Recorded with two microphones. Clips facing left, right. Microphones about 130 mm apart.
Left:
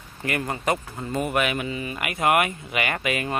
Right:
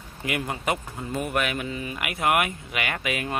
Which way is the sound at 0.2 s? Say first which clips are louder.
Left 2 dB; 5° right (ahead or behind).